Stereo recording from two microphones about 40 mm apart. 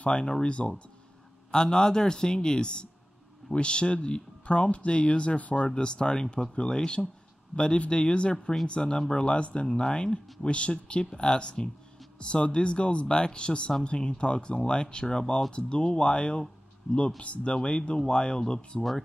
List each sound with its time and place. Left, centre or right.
0.0 s speech: left
18.8 s speech: centre